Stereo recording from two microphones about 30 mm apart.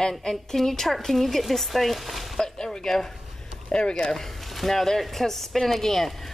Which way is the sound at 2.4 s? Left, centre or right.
Left.